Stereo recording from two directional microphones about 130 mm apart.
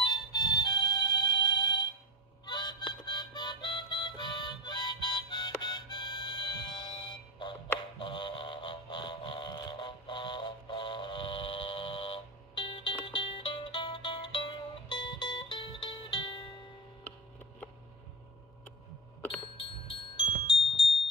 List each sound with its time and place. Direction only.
0.0 s music: 35° left (ahead or behind)
2.4 s harmonica: 35° left (ahead or behind)
8.0 s vehicle: 40° left (ahead or behind)
14.9 s music: 35° left (ahead or behind)
19.5 s music: 45° left (ahead or behind)